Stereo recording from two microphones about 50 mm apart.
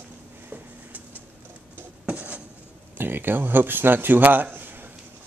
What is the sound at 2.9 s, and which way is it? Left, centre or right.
A man's voice, right.